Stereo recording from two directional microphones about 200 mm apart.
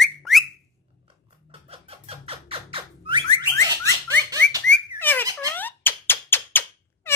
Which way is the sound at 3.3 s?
15° left (ahead or behind).